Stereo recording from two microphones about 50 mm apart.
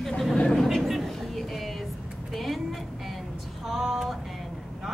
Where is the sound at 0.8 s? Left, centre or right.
Centre.